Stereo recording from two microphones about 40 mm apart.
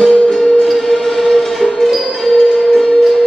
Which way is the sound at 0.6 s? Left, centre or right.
Centre.